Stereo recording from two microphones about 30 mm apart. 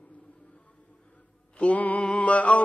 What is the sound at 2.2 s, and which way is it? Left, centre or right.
Music, left.